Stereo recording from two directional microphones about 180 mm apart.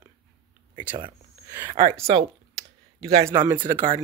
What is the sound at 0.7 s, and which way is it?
Speech, 25° right (ahead or behind).